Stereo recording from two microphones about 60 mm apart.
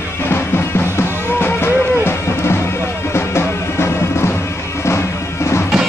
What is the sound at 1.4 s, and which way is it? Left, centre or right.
Music, left.